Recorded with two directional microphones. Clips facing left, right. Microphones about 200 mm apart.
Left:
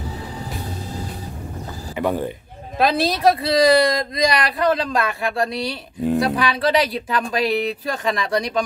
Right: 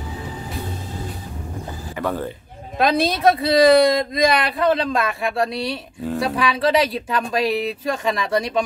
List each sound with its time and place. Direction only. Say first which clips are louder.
2.0 s speech: left 3 dB; 15° left (ahead or behind)
2.8 s speech: even; centre (ahead or behind)